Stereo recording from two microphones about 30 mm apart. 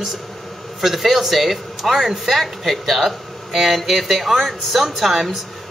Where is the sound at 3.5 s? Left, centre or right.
Centre.